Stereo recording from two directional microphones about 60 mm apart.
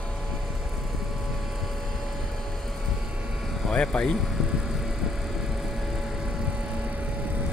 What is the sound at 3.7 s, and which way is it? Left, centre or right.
Vehicle, centre.